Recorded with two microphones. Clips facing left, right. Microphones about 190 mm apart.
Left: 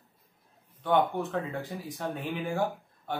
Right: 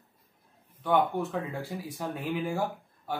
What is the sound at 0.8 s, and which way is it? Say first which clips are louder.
A man's voice: even; 5° right (ahead or behind).